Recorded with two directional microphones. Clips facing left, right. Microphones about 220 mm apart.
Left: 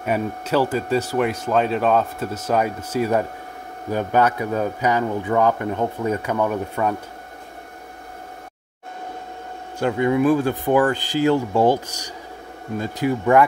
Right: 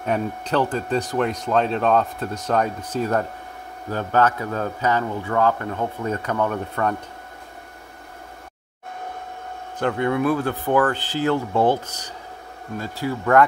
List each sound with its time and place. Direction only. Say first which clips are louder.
0.0 s speech: left 1 dB; 5° left (ahead or behind)
9.8 s speech: left 3 dB; 10° left (ahead or behind)